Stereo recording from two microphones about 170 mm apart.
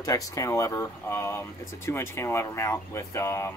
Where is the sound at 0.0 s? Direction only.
20° left (ahead or behind).